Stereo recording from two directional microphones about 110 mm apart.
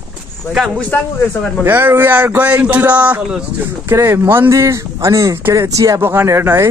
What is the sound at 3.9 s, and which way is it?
Speech, 25° right (ahead or behind).